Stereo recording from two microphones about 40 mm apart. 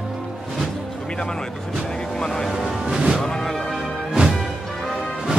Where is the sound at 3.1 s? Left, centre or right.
Centre.